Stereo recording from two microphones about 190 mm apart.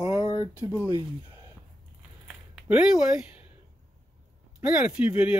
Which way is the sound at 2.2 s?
5° right (ahead or behind).